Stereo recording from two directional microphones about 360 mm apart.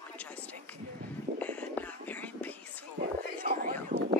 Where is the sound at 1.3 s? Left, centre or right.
Centre.